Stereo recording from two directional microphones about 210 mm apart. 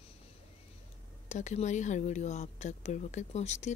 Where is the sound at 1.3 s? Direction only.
35° left (ahead or behind).